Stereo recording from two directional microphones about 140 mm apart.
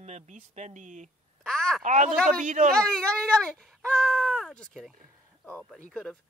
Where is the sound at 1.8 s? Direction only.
60° right (ahead or behind).